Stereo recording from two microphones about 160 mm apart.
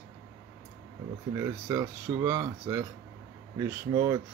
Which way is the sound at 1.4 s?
20° right (ahead or behind).